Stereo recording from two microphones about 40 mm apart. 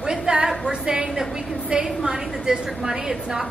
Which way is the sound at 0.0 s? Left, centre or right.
Centre.